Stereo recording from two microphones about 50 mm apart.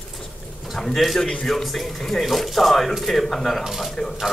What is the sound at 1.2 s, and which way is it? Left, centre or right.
Speech, centre.